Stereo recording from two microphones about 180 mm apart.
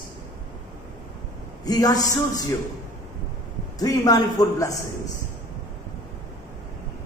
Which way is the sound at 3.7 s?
20° left (ahead or behind).